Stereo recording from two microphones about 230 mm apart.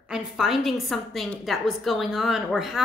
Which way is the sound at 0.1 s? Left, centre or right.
Centre.